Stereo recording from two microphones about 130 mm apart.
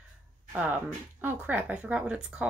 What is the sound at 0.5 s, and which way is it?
Speech, 10° right (ahead or behind).